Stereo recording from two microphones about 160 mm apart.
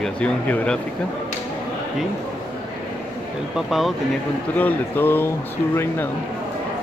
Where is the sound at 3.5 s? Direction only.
Centre (ahead or behind).